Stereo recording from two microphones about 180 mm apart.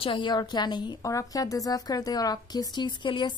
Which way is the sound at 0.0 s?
25° left (ahead or behind).